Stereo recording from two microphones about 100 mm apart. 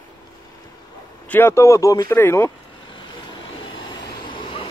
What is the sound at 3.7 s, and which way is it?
Vehicle, 50° left (ahead or behind).